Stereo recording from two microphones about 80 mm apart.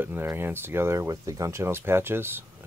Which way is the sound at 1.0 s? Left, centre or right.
Right.